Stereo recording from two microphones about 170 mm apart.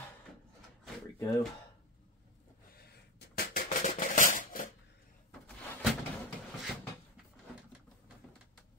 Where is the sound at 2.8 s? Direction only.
65° left (ahead or behind).